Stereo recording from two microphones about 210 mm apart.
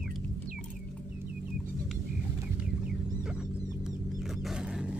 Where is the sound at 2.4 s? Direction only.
5° right (ahead or behind).